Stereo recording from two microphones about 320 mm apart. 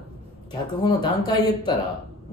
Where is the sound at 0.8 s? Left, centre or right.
Centre.